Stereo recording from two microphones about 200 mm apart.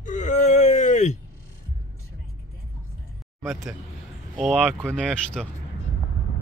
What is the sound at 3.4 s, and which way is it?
Speech, centre (ahead or behind).